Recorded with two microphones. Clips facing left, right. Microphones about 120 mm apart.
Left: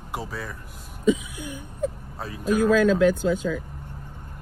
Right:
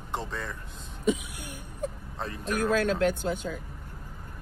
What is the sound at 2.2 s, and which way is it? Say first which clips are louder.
Speech: even; 5° left (ahead or behind).